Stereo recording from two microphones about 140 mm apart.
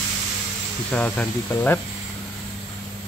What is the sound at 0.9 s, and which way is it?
Speech, 10° left (ahead or behind).